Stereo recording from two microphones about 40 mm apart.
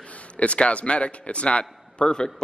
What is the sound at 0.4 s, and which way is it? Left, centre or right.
A man's voice, left.